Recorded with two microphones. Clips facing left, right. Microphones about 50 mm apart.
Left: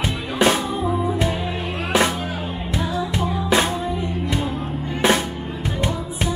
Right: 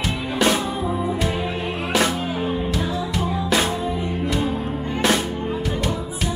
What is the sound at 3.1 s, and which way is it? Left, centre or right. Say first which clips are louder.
Music: left 2 dB; left.